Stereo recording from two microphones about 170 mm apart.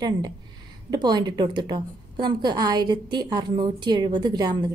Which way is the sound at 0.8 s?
25° right (ahead or behind).